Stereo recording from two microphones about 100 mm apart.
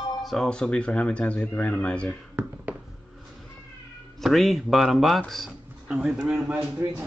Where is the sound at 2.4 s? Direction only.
15° right (ahead or behind).